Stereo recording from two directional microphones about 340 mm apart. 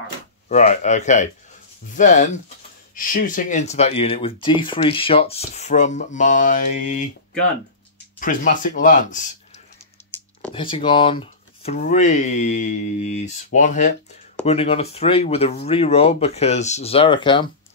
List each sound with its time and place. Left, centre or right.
0.5 s speech: centre
8.2 s speech: left
10.5 s speech: centre